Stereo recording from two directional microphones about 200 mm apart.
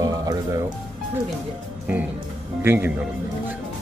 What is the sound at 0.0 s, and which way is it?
Music, 15° right (ahead or behind).